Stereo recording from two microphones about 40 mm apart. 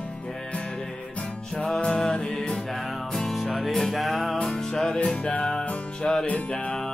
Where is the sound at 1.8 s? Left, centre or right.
Left.